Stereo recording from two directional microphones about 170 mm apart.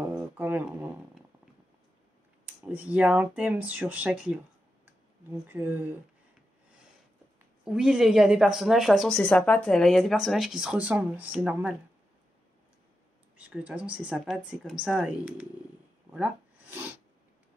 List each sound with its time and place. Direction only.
0.1 s a sound: 10° right (ahead or behind)
2.4 s speech: 10° right (ahead or behind)
5.5 s speech: 10° right (ahead or behind)
7.6 s a woman's voice: 5° right (ahead or behind)
13.4 s speech: 10° right (ahead or behind)